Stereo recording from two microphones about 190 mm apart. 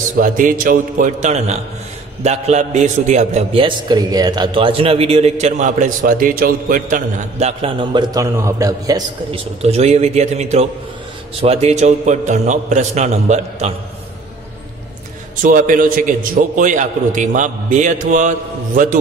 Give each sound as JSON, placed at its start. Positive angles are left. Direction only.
{"t": 0.2, "sound": "a man's voice", "side_deg": -45}
{"t": 15.4, "sound": "a man's voice", "side_deg": -45}